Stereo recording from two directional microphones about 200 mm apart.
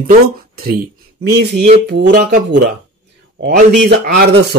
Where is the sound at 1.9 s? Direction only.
55° right (ahead or behind).